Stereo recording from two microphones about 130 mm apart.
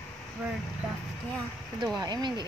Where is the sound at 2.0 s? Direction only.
30° right (ahead or behind).